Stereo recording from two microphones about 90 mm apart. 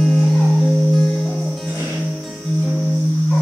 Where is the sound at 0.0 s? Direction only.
5° left (ahead or behind).